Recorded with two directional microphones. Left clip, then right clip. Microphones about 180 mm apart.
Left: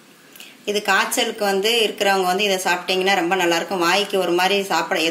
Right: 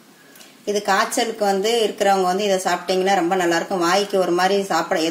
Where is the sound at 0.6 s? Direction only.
35° right (ahead or behind).